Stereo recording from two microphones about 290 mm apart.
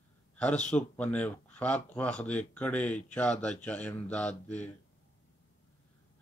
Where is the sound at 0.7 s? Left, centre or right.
Centre.